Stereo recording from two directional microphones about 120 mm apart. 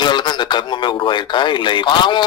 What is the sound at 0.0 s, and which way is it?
A man's voice, 40° left (ahead or behind).